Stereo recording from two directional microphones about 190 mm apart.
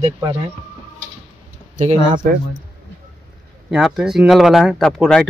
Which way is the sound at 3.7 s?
Centre (ahead or behind).